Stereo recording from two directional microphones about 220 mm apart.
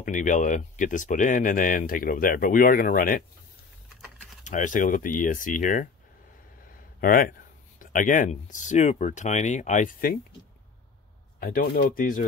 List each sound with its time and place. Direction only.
0.0 s speech: 35° left (ahead or behind)
4.5 s speech: 35° left (ahead or behind)
11.3 s speech: 40° left (ahead or behind)